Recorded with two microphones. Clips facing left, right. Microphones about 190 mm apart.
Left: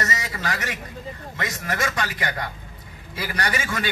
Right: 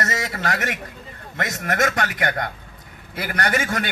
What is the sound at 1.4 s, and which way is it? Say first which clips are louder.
A man's voice: right 5 dB; 60° right (ahead or behind).